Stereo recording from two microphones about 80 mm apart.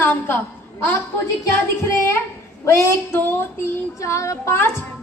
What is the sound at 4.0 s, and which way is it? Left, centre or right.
Speech, left.